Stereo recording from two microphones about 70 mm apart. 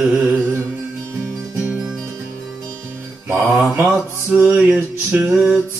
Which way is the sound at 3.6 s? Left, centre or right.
Right.